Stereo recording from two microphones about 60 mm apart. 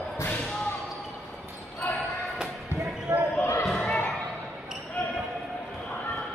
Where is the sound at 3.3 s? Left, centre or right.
Left.